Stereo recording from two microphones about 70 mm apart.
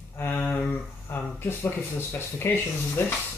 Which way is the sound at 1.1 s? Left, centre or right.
Left.